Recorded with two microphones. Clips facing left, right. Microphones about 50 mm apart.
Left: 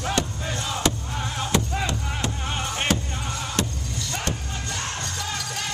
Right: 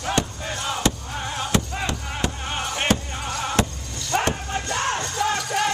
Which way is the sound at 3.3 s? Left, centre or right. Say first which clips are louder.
Right 6 dB; right.